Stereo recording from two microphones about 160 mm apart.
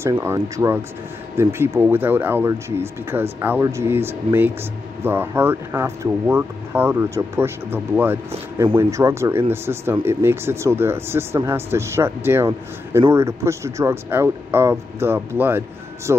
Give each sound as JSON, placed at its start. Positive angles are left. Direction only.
{"t": 0.0, "sound": "speech", "side_deg": -15}